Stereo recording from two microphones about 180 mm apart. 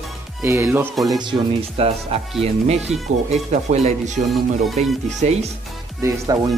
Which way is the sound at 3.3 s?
40° right (ahead or behind).